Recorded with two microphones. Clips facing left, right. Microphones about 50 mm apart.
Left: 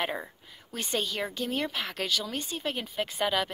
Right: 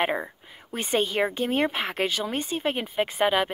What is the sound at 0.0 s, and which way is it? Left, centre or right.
Speech, right.